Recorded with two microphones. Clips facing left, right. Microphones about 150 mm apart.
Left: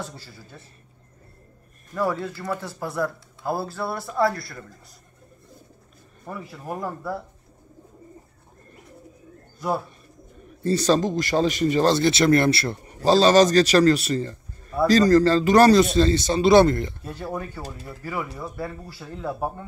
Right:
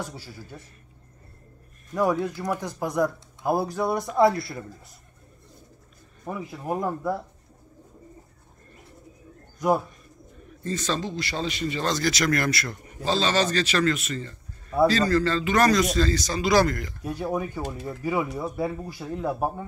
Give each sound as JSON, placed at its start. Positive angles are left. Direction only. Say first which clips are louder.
{"t": 0.0, "sound": "speech", "louder": "right 1 dB", "side_deg": -10}
{"t": 2.0, "sound": "speech", "louder": "right 2 dB", "side_deg": -15}
{"t": 6.2, "sound": "speech", "louder": "right 3 dB", "side_deg": -15}
{"t": 9.6, "sound": "speech", "louder": "right 4 dB", "side_deg": -15}
{"t": 10.6, "sound": "speech", "louder": "left 8 dB", "side_deg": 35}
{"t": 11.9, "sound": "speech", "louder": "left 6 dB", "side_deg": 30}
{"t": 17.0, "sound": "speech", "louder": "right 3 dB", "side_deg": -15}